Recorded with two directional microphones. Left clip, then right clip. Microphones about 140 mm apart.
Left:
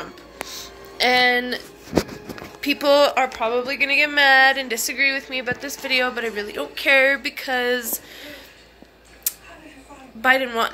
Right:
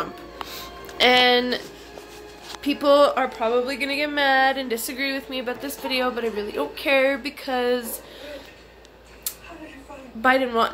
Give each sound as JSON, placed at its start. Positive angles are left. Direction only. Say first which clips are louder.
{"t": 0.0, "sound": "music", "louder": "right 3 dB", "side_deg": -20}
{"t": 0.9, "sound": "speech", "louder": "right 1 dB", "side_deg": -5}
{"t": 2.6, "sound": "speech", "louder": "left 2 dB", "side_deg": -5}
{"t": 2.9, "sound": "a woman's voice", "louder": "even", "side_deg": -15}
{"t": 10.2, "sound": "a woman's voice", "louder": "left 1 dB", "side_deg": -15}